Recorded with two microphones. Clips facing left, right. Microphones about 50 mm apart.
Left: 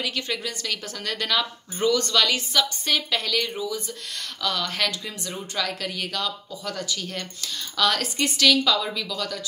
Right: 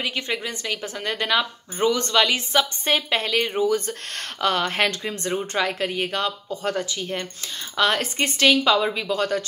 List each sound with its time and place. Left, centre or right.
0.0 s a woman's voice: right
3.6 s speech: right
4.4 s a woman's voice: right